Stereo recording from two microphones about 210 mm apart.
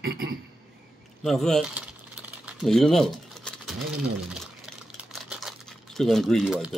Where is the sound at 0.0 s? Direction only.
45° right (ahead or behind).